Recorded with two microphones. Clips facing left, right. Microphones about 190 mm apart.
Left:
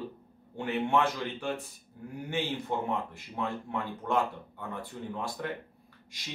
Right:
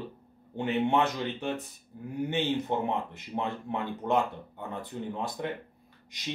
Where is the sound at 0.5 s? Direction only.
20° right (ahead or behind).